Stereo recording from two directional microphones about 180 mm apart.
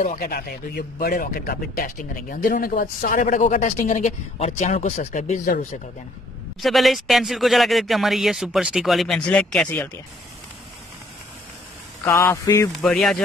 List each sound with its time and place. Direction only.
0.0 s speech: 50° left (ahead or behind)
6.6 s speech: centre (ahead or behind)
12.0 s a man's voice: 15° left (ahead or behind)
12.8 s speech: 5° left (ahead or behind)